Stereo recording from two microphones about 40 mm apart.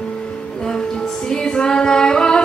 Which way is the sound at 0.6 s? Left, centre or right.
Centre.